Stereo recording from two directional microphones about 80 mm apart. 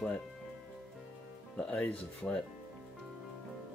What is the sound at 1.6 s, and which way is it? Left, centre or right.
Speech, centre.